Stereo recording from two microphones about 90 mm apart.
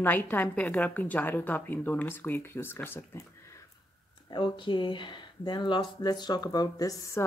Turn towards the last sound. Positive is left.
turn(degrees=40)  # may be behind; listen again after turning